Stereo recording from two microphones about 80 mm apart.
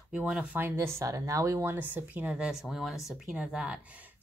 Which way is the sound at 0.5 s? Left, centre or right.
Right.